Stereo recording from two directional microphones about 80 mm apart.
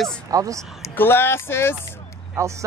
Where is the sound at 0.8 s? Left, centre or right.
Left.